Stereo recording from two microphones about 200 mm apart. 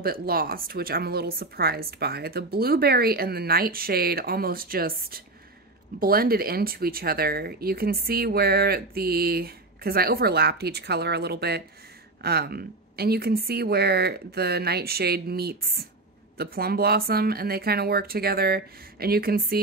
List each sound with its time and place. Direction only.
0.0 s speech: 50° right (ahead or behind)